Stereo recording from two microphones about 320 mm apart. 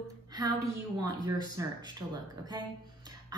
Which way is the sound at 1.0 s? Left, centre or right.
Centre.